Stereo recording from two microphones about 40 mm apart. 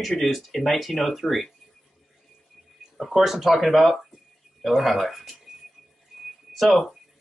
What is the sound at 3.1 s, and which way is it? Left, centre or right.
Speech, centre.